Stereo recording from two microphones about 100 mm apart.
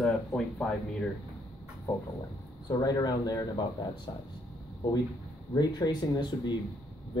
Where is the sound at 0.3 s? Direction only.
10° left (ahead or behind).